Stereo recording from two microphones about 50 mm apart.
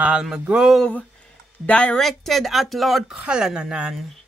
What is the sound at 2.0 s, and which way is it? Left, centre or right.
Speech, centre.